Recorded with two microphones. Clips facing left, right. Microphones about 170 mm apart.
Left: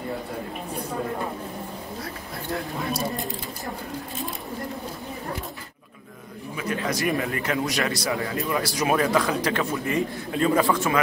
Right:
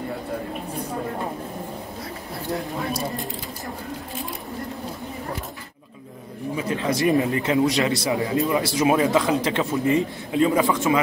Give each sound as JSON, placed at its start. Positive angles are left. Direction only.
{"t": 6.5, "sound": "speech", "side_deg": -30}